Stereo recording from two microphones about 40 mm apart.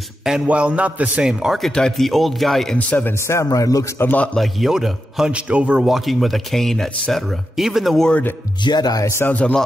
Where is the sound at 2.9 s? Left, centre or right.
Left.